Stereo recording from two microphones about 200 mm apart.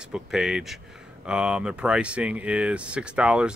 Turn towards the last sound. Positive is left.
turn(degrees=-5)  # may be behind; listen again after turning